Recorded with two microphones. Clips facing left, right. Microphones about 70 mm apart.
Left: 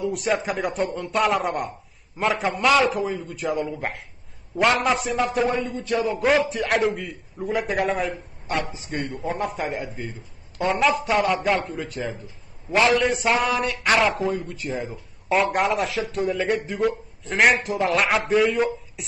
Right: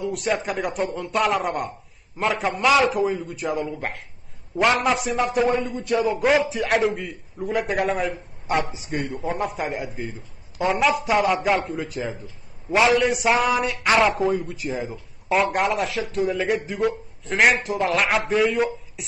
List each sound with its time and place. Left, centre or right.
0.0 s speech: centre
5.5 s a sound: centre
6.5 s speech: centre